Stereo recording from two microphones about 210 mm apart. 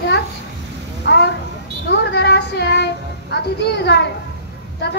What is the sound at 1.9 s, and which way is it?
Child singing, 55° left (ahead or behind).